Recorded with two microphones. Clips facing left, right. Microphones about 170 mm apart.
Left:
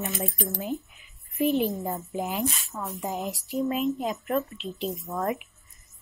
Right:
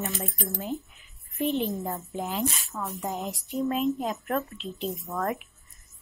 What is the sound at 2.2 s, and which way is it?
Speech, 15° left (ahead or behind).